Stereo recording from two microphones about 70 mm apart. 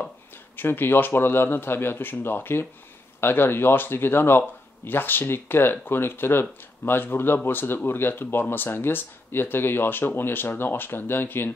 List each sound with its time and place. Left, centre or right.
0.6 s speech: left